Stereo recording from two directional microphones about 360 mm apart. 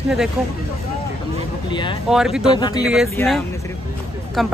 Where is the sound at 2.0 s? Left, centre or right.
Centre.